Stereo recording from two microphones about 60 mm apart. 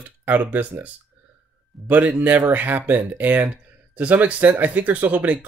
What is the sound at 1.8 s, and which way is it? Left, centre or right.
Speech, right.